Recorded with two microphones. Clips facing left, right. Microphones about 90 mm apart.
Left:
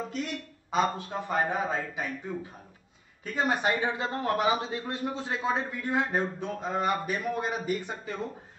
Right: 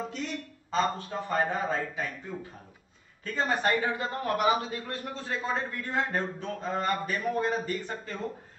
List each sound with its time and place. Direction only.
0.1 s speech: 5° left (ahead or behind)
3.3 s speech: 10° left (ahead or behind)